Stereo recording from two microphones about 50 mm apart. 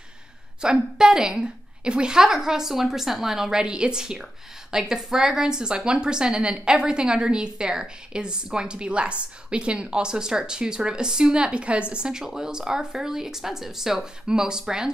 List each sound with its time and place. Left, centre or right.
0.6 s speech: centre